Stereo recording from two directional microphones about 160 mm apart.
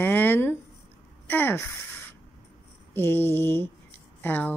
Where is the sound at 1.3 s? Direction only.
10° left (ahead or behind).